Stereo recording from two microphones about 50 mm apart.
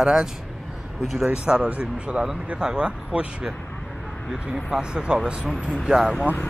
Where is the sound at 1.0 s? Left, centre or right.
Centre.